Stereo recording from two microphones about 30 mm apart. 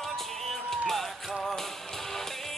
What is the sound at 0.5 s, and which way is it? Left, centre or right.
Music, centre.